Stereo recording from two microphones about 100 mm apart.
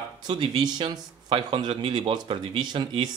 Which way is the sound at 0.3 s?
45° right (ahead or behind).